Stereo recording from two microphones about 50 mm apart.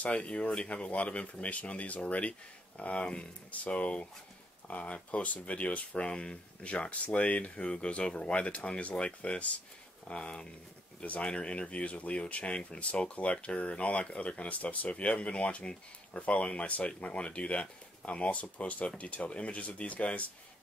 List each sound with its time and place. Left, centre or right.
0.0 s speech: left